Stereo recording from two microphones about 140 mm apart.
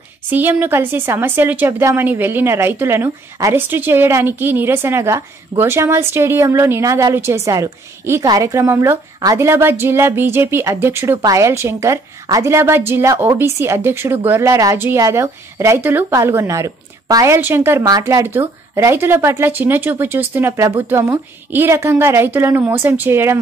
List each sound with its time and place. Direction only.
0.3 s a woman's voice: 15° right (ahead or behind)